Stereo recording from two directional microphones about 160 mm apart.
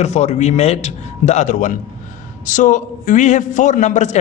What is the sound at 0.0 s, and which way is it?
A man's voice, 45° left (ahead or behind).